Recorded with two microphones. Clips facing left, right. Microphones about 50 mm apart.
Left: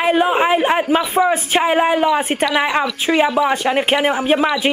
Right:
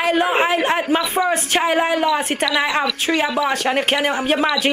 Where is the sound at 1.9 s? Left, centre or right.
Left.